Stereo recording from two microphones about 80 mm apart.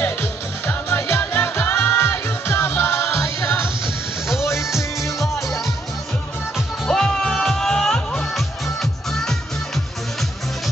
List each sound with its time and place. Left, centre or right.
0.0 s music: left
4.6 s music: centre
6.9 s music: centre